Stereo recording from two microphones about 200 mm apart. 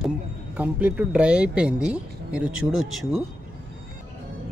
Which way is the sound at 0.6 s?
10° right (ahead or behind).